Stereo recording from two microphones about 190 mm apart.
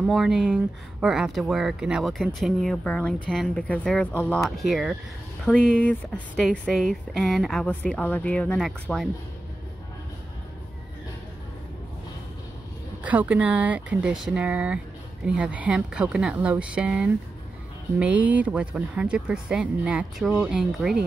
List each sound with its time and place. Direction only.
0.0 s speech: centre (ahead or behind)
13.0 s speech: 10° right (ahead or behind)